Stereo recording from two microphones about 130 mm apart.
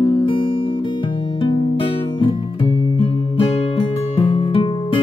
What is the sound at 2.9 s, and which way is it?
Music, 40° left (ahead or behind).